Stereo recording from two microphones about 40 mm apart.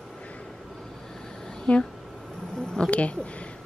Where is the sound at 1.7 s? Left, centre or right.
Left.